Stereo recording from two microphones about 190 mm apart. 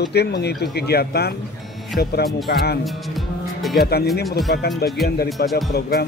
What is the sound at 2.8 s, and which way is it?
Music, centre (ahead or behind).